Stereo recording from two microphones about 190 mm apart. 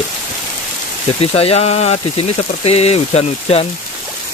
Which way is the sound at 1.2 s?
30° left (ahead or behind).